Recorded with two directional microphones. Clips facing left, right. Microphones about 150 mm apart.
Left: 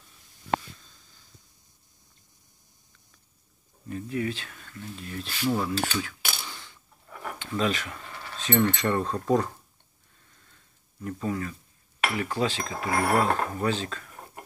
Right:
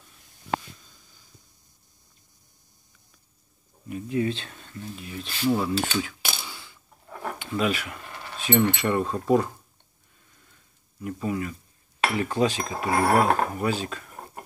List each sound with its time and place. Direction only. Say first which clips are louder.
3.9 s speech: right 4 dB; 25° right (ahead or behind)
4.9 s speech: even; 5° right (ahead or behind)
5.7 s speech: right 3 dB; 25° right (ahead or behind)
6.4 s coin: even; 10° right (ahead or behind)
7.1 s a sound: right 4 dB; 35° right (ahead or behind)
7.3 s speech: right 1 dB; 10° right (ahead or behind)
11.0 s speech: right 2 dB; 15° right (ahead or behind)
12.7 s speech: right 2 dB; 30° right (ahead or behind)
13.2 s speech: right 3 dB; 10° right (ahead or behind)